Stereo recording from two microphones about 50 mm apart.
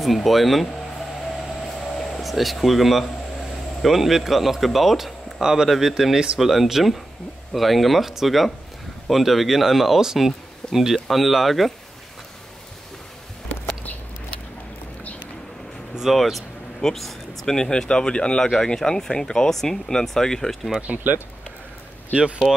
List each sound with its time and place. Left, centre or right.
0.0 s speech: centre
1.6 s air conditioning: centre
5.7 s speech: centre
16.0 s speech: centre
20.8 s speech: right
22.1 s speech: right